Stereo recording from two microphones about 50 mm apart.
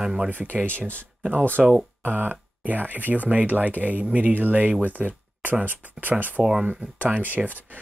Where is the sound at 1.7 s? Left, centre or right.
Right.